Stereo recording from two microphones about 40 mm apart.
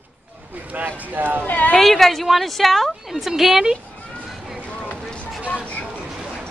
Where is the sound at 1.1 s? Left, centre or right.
Right.